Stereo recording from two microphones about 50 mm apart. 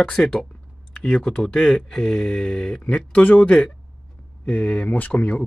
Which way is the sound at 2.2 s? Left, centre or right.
Left.